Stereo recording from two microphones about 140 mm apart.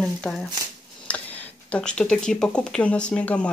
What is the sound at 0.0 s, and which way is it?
Speech, 5° left (ahead or behind).